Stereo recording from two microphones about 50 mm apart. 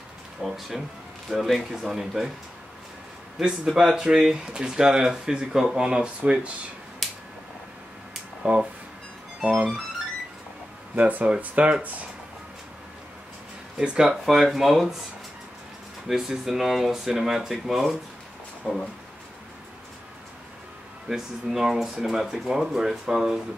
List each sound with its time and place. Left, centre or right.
0.4 s speech: centre
3.6 s speech: centre
7.0 s a sound: centre
8.4 s speech: right
11.0 s speech: right
13.7 s speech: centre
16.1 s speech: centre
21.1 s speech: centre